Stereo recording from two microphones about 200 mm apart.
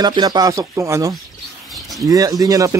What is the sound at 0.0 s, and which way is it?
A man's voice, 20° right (ahead or behind).